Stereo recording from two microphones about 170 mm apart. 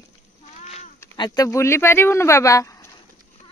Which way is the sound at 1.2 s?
20° left (ahead or behind).